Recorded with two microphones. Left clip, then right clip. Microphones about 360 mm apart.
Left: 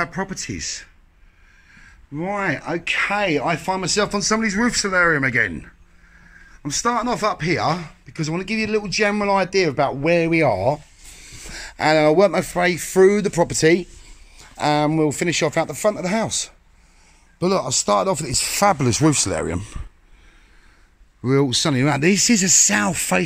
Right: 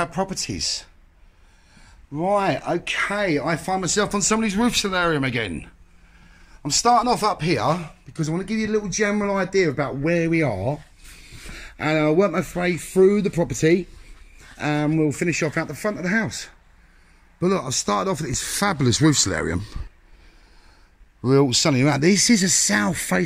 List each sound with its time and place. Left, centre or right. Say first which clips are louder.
0.0 s speech: even; centre
2.1 s speech: right 3 dB; centre
11.8 s speech: left 5 dB; centre
14.6 s speech: left 4 dB; centre
17.4 s speech: left 3 dB; centre
21.2 s speech: right 1 dB; centre